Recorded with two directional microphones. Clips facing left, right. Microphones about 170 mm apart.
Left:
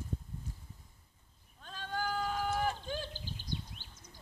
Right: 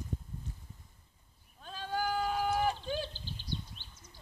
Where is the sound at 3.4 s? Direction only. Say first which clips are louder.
Right 2 dB; 15° left (ahead or behind).